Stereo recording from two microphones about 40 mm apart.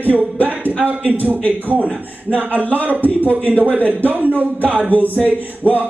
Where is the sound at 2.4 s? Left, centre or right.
Right.